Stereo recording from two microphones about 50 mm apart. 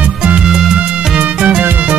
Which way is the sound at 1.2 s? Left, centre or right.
Right.